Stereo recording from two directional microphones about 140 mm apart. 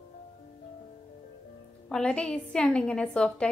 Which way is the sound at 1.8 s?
5° left (ahead or behind).